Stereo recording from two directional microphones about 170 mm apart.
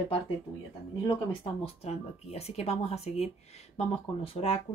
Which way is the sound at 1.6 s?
35° left (ahead or behind).